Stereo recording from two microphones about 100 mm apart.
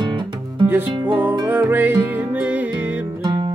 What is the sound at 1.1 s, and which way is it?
Music, 20° right (ahead or behind).